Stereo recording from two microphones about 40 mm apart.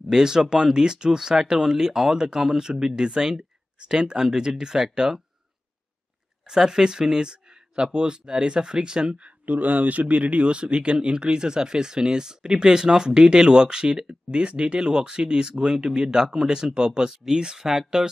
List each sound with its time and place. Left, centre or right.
0.1 s speech: centre
6.4 s speech: centre
9.5 s speech: right; by 18.0 s centre